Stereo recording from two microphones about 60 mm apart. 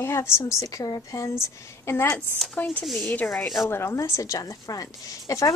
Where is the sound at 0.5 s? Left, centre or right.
Left.